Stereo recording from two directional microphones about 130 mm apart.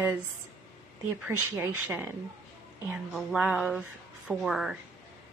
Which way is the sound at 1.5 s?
20° right (ahead or behind).